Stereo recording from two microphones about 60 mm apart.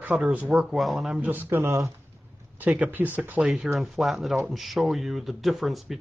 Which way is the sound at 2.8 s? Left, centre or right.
Right.